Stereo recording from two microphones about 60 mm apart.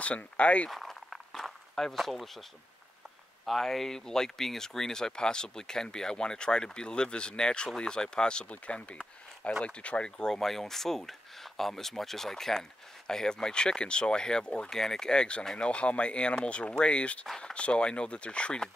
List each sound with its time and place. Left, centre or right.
0.0 s speech: left
0.7 s walk: centre
3.4 s speech: centre